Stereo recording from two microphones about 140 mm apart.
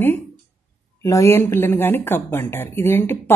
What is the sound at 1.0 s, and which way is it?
Speech, 20° left (ahead or behind).